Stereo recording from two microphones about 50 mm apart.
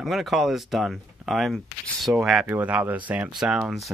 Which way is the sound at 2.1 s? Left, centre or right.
Right.